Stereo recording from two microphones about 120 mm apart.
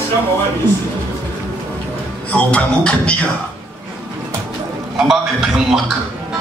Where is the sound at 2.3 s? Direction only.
10° left (ahead or behind).